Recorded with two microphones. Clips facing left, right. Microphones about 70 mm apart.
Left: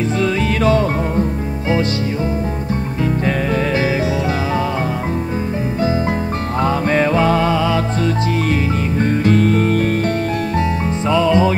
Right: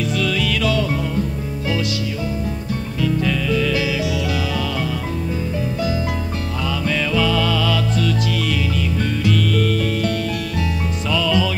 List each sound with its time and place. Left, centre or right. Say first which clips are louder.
0.0 s music: left 3 dB; left
3.0 s music: left 1 dB; left
6.6 s music: left 7 dB; left